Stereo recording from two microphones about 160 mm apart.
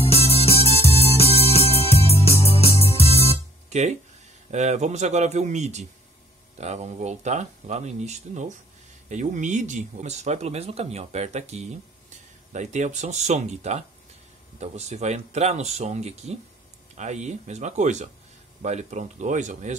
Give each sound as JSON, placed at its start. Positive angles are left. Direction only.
{"t": 0.0, "sound": "music", "side_deg": 35}
{"t": 3.7, "sound": "speech", "side_deg": -45}